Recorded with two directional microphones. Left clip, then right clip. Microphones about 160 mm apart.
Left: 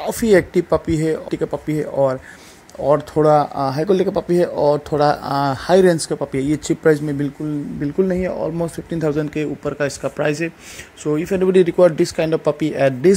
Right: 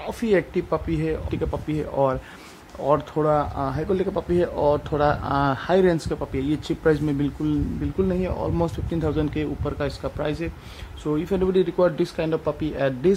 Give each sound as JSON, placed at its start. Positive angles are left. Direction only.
{"t": 0.0, "sound": "speech", "side_deg": 35}